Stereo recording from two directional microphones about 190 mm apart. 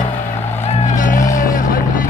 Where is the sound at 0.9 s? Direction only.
45° left (ahead or behind).